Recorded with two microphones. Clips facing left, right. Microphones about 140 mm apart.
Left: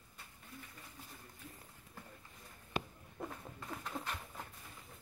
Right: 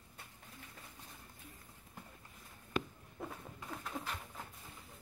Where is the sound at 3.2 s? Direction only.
5° right (ahead or behind).